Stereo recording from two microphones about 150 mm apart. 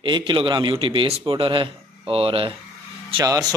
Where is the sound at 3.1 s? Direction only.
25° right (ahead or behind).